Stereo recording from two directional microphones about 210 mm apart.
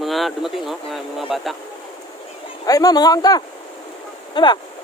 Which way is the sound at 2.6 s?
15° left (ahead or behind).